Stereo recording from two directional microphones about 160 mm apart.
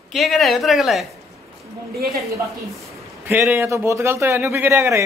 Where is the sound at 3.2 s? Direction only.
10° right (ahead or behind).